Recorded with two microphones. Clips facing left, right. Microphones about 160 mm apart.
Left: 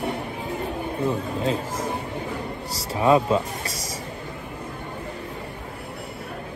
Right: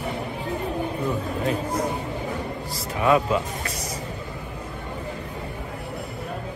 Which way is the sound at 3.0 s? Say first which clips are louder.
Left 2 dB; 30° left (ahead or behind).